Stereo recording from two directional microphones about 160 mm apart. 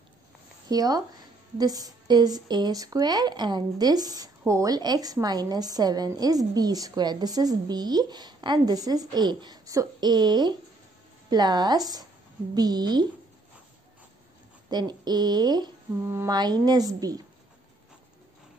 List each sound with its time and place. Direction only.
0.7 s a woman's voice: 25° right (ahead or behind)
14.7 s a woman's voice: 25° right (ahead or behind)